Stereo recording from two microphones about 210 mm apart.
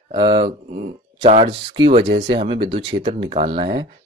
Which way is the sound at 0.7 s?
35° right (ahead or behind).